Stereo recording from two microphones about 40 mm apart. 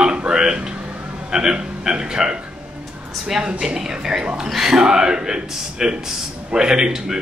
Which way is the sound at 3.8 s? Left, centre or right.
Centre.